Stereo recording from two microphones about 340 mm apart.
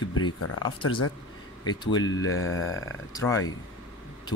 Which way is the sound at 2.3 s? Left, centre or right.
Left.